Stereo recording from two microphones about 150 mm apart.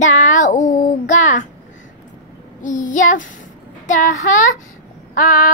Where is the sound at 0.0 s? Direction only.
55° left (ahead or behind).